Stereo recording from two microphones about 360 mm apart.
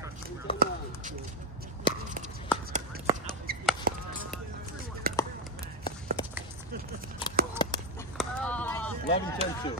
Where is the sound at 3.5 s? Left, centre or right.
Right.